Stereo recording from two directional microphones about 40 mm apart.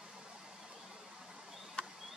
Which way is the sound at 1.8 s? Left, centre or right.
Left.